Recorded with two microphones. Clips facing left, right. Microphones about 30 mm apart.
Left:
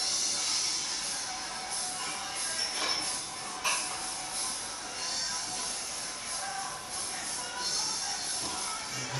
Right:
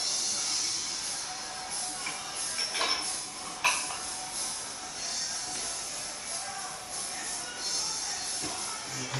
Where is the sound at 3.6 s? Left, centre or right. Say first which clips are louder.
Right 4 dB; right.